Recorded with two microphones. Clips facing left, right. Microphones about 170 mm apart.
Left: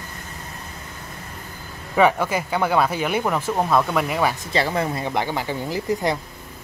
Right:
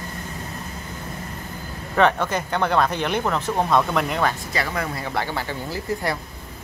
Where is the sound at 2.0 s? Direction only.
10° left (ahead or behind).